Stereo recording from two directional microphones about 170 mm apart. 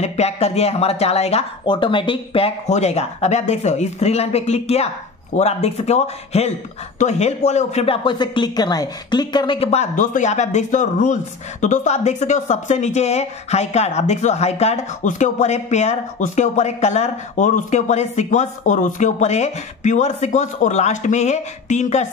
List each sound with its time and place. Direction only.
0.0 s speech: 40° left (ahead or behind)